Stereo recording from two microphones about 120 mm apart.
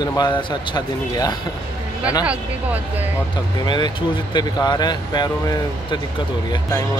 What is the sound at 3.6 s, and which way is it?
Speech, 40° left (ahead or behind).